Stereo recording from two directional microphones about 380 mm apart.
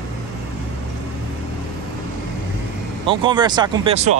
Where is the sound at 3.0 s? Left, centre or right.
Centre.